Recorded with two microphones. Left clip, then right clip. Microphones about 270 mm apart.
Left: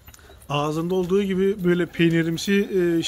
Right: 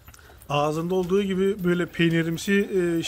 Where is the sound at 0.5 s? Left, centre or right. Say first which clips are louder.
Even; centre.